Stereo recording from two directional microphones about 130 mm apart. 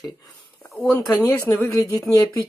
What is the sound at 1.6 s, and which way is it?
Speech, 25° left (ahead or behind).